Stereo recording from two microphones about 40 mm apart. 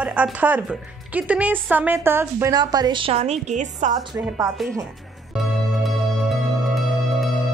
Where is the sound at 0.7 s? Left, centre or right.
Right.